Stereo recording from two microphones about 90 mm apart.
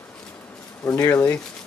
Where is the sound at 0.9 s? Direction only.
35° left (ahead or behind).